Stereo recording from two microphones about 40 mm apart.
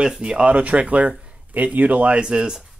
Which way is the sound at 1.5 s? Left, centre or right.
Right.